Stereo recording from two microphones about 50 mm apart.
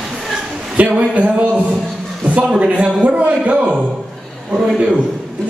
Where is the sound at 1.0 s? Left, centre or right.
Right.